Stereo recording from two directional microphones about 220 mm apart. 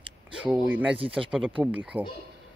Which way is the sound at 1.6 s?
5° right (ahead or behind).